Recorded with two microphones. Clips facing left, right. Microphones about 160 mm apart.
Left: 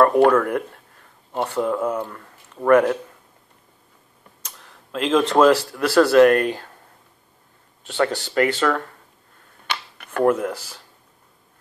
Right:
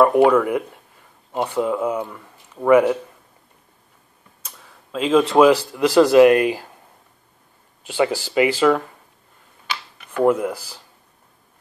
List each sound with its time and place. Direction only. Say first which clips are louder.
0.0 s speech: right 1 dB; 10° right (ahead or behind)
4.5 s speech: right 1 dB; 5° right (ahead or behind)
7.8 s speech: right 2 dB; 10° right (ahead or behind)
9.7 s a sound: left 1 dB; 60° left (ahead or behind)
10.2 s speech: right 1 dB; 10° right (ahead or behind)